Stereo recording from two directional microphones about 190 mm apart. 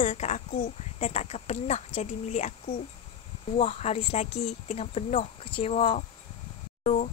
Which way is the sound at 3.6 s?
30° left (ahead or behind).